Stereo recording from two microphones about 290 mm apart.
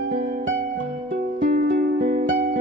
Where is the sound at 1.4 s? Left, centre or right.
Right.